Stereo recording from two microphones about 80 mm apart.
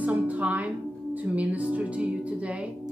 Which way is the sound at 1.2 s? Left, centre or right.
Centre.